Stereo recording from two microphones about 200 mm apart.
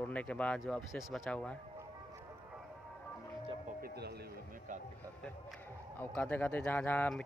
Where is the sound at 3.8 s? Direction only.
55° right (ahead or behind).